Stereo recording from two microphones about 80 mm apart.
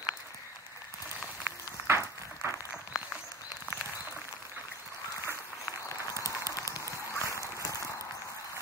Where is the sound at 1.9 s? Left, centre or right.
Right.